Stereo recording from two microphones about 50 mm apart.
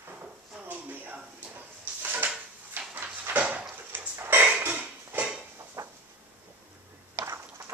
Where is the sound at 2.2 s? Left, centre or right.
Right.